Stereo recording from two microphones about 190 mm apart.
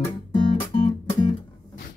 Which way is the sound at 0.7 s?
45° left (ahead or behind).